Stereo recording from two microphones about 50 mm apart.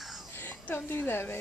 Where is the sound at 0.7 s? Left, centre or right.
Left.